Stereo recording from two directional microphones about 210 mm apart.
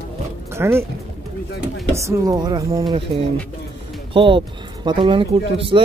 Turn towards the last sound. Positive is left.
turn(degrees=-25)  # may be behind; listen again after turning